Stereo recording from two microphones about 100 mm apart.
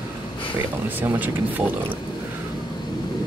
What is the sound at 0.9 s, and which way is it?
Speech, 20° right (ahead or behind).